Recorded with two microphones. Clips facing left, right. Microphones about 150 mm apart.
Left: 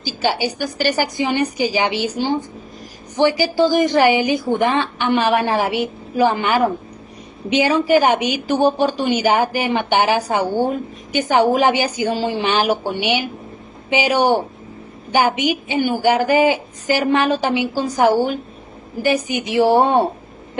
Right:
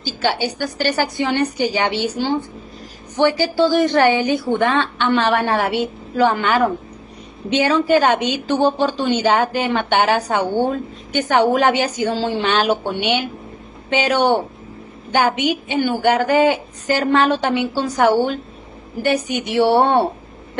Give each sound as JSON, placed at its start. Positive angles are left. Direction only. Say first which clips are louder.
{"t": 0.0, "sound": "a woman's voice", "louder": "even", "side_deg": 10}